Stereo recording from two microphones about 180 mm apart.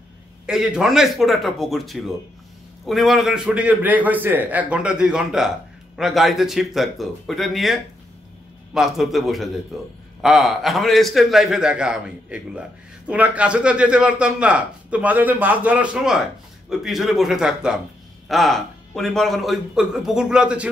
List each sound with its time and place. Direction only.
0.5 s a man's voice: 5° right (ahead or behind)